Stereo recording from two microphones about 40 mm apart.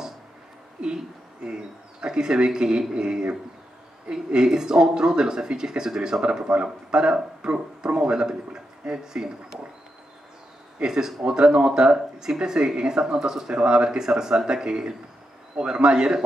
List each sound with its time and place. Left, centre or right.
0.7 s speech: right
6.4 s speech: right
10.8 s speech: centre